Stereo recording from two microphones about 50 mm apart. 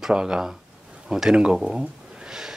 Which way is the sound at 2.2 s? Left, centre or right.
Centre.